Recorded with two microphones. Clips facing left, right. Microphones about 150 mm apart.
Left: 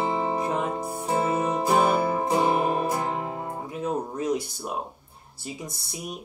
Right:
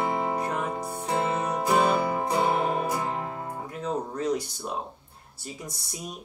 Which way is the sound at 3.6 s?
10° left (ahead or behind).